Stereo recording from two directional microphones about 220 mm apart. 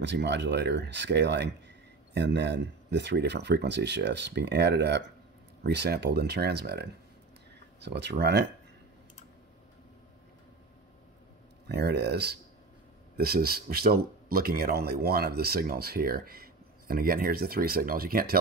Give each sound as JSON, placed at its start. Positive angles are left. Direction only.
{"t": 0.0, "sound": "speech", "side_deg": -50}
{"t": 11.7, "sound": "speech", "side_deg": -50}